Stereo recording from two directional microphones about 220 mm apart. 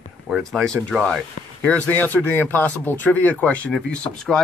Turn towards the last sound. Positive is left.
turn(degrees=5)  # may be behind; listen again after turning